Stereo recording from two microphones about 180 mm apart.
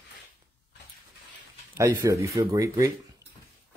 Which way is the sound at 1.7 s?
15° right (ahead or behind).